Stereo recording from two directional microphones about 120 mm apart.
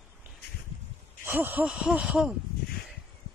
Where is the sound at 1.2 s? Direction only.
15° right (ahead or behind).